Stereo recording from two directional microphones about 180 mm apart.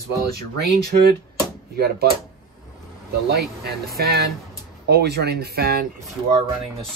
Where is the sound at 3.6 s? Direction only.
60° right (ahead or behind).